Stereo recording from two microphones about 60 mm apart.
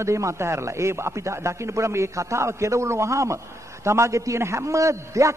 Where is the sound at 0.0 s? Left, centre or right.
Right.